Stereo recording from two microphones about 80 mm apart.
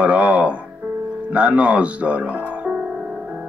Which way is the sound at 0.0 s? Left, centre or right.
Centre.